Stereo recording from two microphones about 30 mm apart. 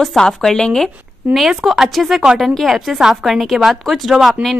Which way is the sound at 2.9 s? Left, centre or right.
Centre.